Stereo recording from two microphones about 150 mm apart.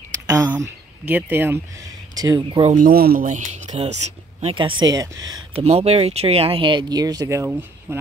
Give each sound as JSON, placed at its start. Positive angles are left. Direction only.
{"t": 0.5, "sound": "speech", "side_deg": -10}
{"t": 2.1, "sound": "speech", "side_deg": -25}
{"t": 2.7, "sound": "speech", "side_deg": -75}
{"t": 3.3, "sound": "speech", "side_deg": -55}
{"t": 4.6, "sound": "speech", "side_deg": -30}
{"t": 5.6, "sound": "speech", "side_deg": -45}